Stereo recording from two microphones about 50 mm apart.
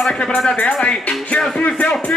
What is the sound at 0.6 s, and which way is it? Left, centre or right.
Speech, left.